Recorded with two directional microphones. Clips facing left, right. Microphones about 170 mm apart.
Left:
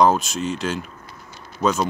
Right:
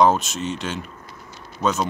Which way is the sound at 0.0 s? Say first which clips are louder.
Even; centre (ahead or behind).